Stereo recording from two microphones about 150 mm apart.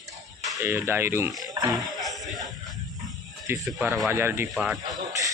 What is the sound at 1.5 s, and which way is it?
Music, 25° right (ahead or behind).